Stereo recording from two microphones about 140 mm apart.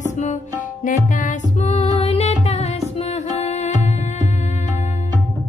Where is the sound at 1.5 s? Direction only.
50° left (ahead or behind).